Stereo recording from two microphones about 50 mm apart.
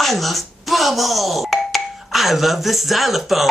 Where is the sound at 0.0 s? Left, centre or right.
Centre.